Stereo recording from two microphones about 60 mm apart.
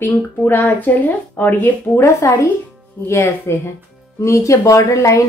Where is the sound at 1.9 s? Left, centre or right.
Left.